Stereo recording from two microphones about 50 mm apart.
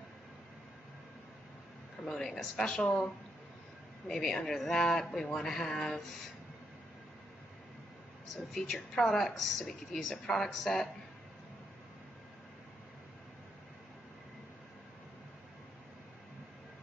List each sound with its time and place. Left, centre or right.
2.0 s a man's voice: centre
4.2 s a man's voice: centre
8.4 s a man's voice: centre
10.1 s a man's voice: centre
10.4 s speech: centre